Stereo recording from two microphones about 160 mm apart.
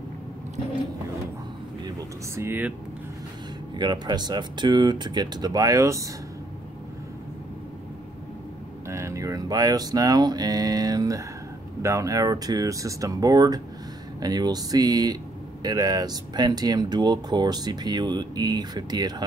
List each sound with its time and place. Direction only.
1.9 s speech: 20° right (ahead or behind)
3.7 s speech: 25° right (ahead or behind)
8.8 s speech: 20° right (ahead or behind)